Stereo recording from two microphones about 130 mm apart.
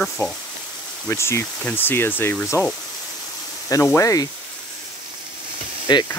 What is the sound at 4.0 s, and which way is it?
Speech, 25° left (ahead or behind).